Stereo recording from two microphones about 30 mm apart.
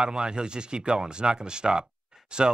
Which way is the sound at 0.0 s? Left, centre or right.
Right.